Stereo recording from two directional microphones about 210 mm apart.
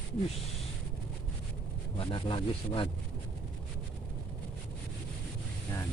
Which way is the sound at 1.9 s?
25° left (ahead or behind).